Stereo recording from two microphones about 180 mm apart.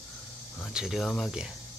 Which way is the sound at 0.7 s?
Centre (ahead or behind).